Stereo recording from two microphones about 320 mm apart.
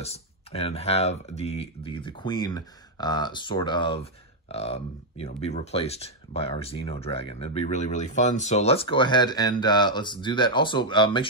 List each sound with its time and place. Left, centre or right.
0.0 s speech: centre